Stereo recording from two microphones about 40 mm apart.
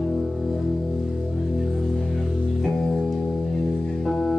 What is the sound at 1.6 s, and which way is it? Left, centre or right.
Music, centre.